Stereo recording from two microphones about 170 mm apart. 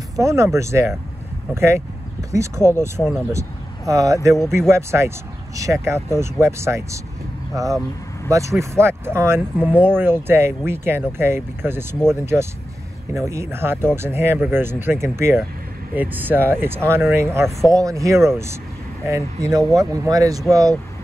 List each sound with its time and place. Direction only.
0.2 s speech: 15° right (ahead or behind)
3.0 s speech: centre (ahead or behind)
3.3 s speech: 20° right (ahead or behind)